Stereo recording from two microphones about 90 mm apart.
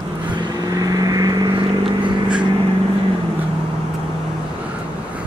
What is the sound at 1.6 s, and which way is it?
Vehicle, 70° right (ahead or behind).